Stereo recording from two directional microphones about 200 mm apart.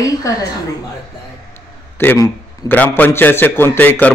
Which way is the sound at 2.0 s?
10° left (ahead or behind).